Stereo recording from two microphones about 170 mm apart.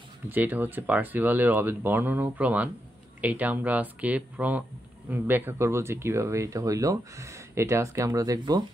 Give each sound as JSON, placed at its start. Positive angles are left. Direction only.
{"t": 0.3, "sound": "speech", "side_deg": -10}